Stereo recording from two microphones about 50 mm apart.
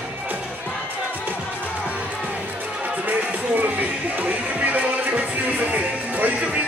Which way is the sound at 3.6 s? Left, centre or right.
Right.